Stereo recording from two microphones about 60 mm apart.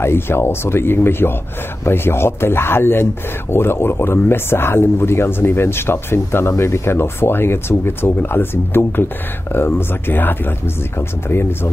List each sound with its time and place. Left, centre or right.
0.0 s speech: left